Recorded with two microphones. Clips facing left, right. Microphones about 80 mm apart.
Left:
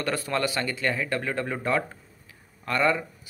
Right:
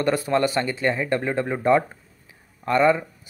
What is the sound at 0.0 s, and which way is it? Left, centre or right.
Speech, centre.